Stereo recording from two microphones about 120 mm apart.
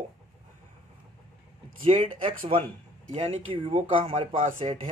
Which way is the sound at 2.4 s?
65° right (ahead or behind).